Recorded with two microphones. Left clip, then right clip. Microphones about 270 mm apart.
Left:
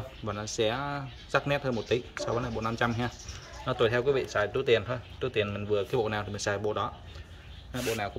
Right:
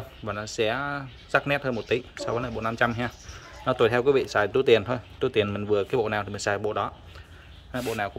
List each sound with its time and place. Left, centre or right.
0.2 s speech: centre